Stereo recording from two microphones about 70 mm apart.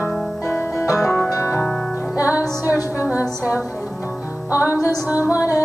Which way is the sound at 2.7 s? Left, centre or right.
Left.